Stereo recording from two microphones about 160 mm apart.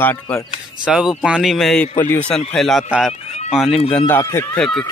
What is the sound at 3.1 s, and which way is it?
Fowl, 40° left (ahead or behind).